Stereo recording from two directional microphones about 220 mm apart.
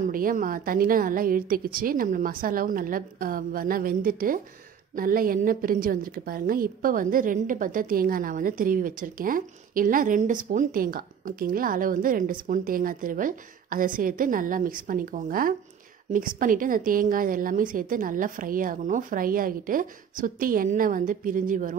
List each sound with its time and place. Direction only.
0.0 s a woman's voice: 40° right (ahead or behind)